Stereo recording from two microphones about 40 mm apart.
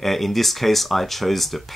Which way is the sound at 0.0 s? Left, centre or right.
Centre.